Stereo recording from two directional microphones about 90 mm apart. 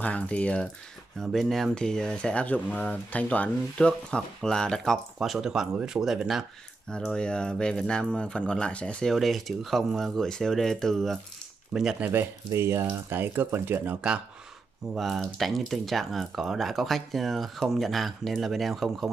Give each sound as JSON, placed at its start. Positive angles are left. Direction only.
{"t": 0.0, "sound": "speech", "side_deg": 15}
{"t": 1.2, "sound": "speech", "side_deg": 0}
{"t": 6.9, "sound": "speech", "side_deg": 10}
{"t": 9.1, "sound": "speech", "side_deg": 0}
{"t": 11.7, "sound": "speech", "side_deg": -10}
{"t": 12.0, "sound": "speech", "side_deg": -25}
{"t": 15.0, "sound": "speech", "side_deg": 0}